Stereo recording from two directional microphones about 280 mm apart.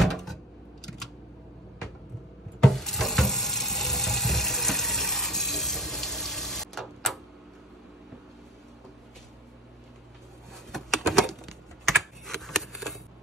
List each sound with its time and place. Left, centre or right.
0.0 s a sound: centre
0.8 s camera: centre
2.6 s water tap: centre
10.7 s typing: centre